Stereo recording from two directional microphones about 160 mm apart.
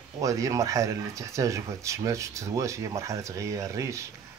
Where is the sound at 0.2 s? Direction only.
20° right (ahead or behind).